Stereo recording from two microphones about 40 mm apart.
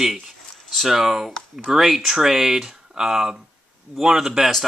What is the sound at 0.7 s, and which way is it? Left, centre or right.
Speech, centre.